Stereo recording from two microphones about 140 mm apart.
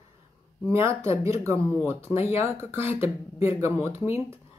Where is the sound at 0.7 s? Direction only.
20° right (ahead or behind).